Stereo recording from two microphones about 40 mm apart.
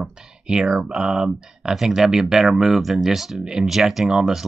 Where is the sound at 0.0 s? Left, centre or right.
Centre.